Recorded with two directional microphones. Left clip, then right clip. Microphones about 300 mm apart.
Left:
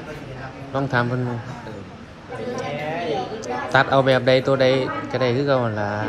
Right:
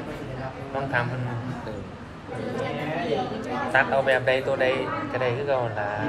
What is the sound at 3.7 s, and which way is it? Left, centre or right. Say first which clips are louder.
A man's voice: left 4 dB; left.